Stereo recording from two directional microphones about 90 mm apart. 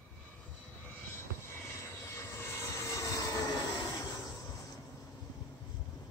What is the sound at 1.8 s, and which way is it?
Vehicle, 30° left (ahead or behind).